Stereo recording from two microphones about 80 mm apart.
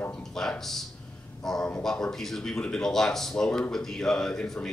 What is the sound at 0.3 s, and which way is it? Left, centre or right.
A man's voice, centre.